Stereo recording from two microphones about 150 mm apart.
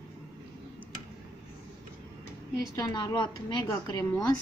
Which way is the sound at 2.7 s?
30° left (ahead or behind).